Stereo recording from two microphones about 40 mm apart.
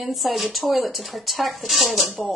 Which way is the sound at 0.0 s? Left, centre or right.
Centre.